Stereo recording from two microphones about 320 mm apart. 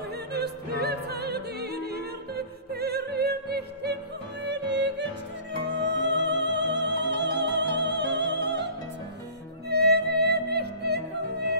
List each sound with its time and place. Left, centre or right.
0.1 s opera: right
5.5 s music: right
9.7 s music: right